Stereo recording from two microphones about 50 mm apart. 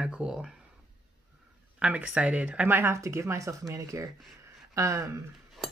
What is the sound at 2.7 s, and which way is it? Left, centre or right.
Speech, right.